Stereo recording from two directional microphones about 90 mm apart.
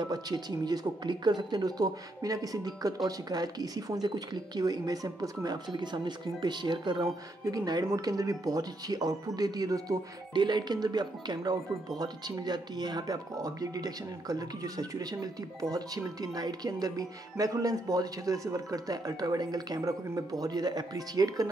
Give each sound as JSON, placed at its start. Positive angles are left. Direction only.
{"t": 0.0, "sound": "speech", "side_deg": -50}
{"t": 7.4, "sound": "speech", "side_deg": -45}
{"t": 10.3, "sound": "speech", "side_deg": -55}